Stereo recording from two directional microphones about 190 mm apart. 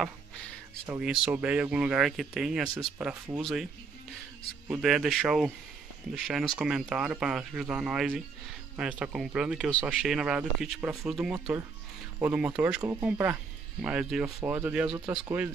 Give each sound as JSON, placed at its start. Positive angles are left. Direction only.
{"t": 0.8, "sound": "speech", "side_deg": -5}
{"t": 4.6, "sound": "speech", "side_deg": -5}
{"t": 15.0, "sound": "speech", "side_deg": -20}